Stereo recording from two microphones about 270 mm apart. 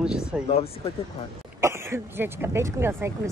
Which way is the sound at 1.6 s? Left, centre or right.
Centre.